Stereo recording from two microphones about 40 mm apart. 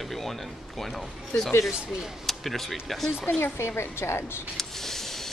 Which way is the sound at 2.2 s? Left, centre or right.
Centre.